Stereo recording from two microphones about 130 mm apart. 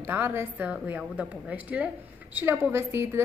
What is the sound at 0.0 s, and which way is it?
A woman's voice, 15° right (ahead or behind).